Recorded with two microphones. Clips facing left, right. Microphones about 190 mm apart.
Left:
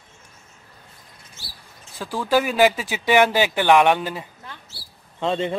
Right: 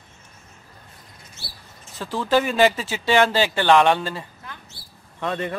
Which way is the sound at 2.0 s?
10° left (ahead or behind).